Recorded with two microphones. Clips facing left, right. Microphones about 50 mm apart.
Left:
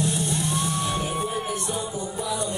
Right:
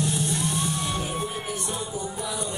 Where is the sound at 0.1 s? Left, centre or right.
Left.